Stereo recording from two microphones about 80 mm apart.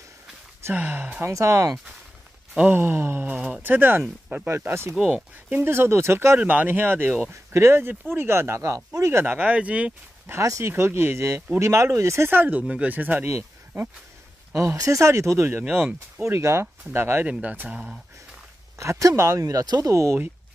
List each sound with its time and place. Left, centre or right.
0.7 s speech: right
1.3 s speech: right
9.2 s speech: centre
10.4 s speech: right
10.7 s speech: right
12.3 s speech: right
13.3 s a sound: right
14.5 s speech: right
17.3 s speech: centre
18.8 s speech: right
19.9 s speech: right